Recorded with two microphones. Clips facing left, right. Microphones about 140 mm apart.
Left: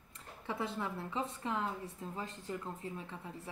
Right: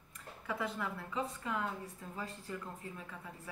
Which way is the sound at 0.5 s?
25° left (ahead or behind).